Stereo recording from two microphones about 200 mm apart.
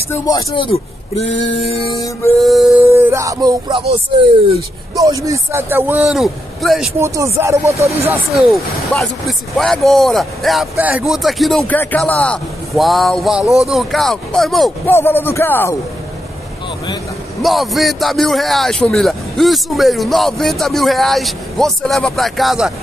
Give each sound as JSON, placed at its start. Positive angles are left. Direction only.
{"t": 0.1, "sound": "speech", "side_deg": 15}
{"t": 0.7, "sound": "speech", "side_deg": 30}
{"t": 1.6, "sound": "music", "side_deg": 30}
{"t": 2.4, "sound": "speech", "side_deg": 0}
{"t": 2.9, "sound": "speech", "side_deg": -15}
{"t": 5.2, "sound": "a man's voice", "side_deg": -15}
{"t": 7.0, "sound": "a man's voice", "side_deg": -15}
{"t": 8.4, "sound": "speech", "side_deg": 0}
{"t": 14.9, "sound": "speech", "side_deg": 10}
{"t": 17.4, "sound": "speech", "side_deg": 0}